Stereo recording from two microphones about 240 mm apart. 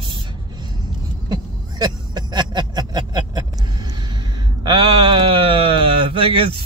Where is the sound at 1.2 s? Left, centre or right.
Centre.